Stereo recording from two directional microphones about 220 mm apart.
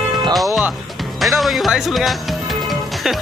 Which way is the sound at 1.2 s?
Centre (ahead or behind).